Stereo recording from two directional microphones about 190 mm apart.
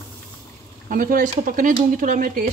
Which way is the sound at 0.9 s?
45° right (ahead or behind).